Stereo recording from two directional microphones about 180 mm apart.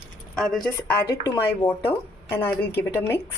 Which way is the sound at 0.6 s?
15° left (ahead or behind).